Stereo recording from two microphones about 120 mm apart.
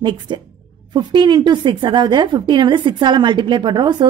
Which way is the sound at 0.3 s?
40° right (ahead or behind).